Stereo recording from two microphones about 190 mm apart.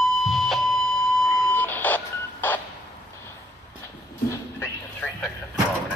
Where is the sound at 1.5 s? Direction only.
10° left (ahead or behind).